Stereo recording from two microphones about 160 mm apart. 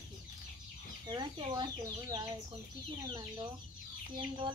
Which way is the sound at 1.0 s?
25° right (ahead or behind).